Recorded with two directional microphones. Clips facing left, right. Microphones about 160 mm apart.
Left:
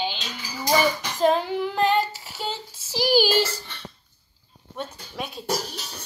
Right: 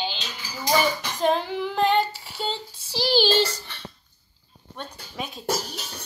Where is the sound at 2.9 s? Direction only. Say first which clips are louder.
Left 1 dB; 10° left (ahead or behind).